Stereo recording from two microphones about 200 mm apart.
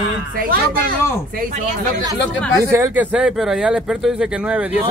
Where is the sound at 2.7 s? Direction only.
10° right (ahead or behind).